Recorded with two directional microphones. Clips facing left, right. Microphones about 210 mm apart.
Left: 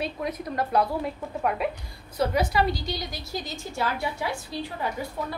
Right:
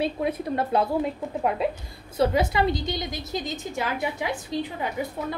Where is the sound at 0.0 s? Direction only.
25° right (ahead or behind).